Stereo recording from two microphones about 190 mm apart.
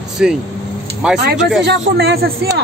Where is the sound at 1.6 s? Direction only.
60° right (ahead or behind).